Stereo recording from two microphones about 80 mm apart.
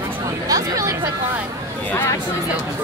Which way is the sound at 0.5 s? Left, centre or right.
Right.